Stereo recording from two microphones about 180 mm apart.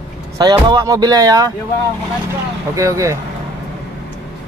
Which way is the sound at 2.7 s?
15° right (ahead or behind).